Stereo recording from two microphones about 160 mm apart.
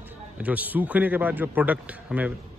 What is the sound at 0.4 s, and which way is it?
A man's voice, 10° right (ahead or behind).